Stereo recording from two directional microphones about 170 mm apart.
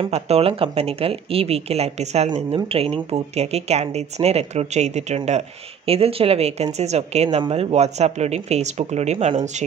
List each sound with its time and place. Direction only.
0.0 s speech: 35° right (ahead or behind)